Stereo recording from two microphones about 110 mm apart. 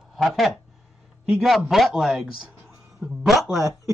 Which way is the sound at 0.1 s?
Centre (ahead or behind).